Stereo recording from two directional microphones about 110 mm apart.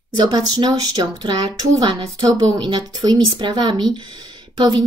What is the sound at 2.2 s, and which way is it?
Speech, 35° right (ahead or behind).